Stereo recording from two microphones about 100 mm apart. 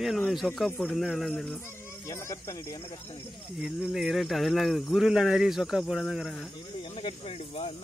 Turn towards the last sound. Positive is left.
turn(degrees=65)  # may be behind; listen again after turning